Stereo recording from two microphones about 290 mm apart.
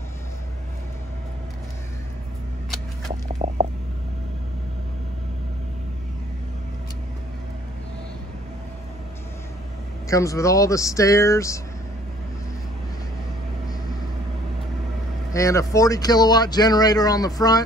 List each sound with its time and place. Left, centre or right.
3.4 s a sound: right
10.0 s speech: centre
15.3 s speech: centre